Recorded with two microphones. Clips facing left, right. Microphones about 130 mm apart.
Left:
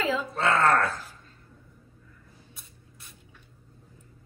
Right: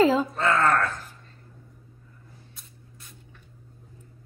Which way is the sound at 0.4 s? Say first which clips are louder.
Left 5 dB; centre (ahead or behind).